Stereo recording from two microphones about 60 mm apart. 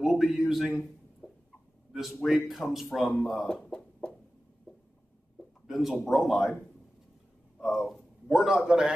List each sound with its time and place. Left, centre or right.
0.0 s a sound: centre
0.5 s speech: centre
1.9 s speech: centre
3.6 s a sound: centre
5.7 s speech: centre
7.6 s speech: centre
8.4 s a man's voice: centre